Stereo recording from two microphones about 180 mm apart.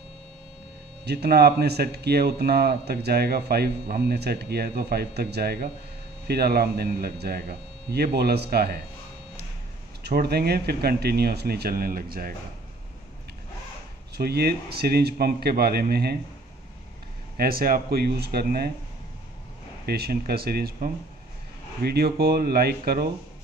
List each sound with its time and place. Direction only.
1.0 s speech: 65° right (ahead or behind)
10.0 s speech: 60° right (ahead or behind)
14.1 s speech: 60° right (ahead or behind)
17.4 s speech: 55° right (ahead or behind)
19.9 s speech: 60° right (ahead or behind)